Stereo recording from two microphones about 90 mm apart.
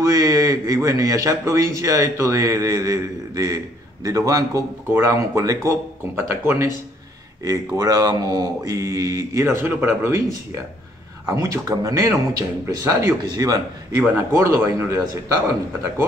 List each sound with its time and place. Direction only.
0.0 s a man's voice: 35° right (ahead or behind)
7.4 s a man's voice: 40° right (ahead or behind)
11.2 s a man's voice: 40° right (ahead or behind)
13.2 s a man's voice: 45° right (ahead or behind)
14.1 s a man's voice: 30° right (ahead or behind)